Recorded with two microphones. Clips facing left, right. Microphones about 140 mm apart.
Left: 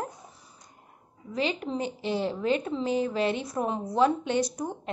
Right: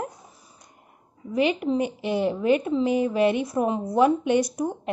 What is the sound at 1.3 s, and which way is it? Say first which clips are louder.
Speech: right 7 dB; 15° right (ahead or behind).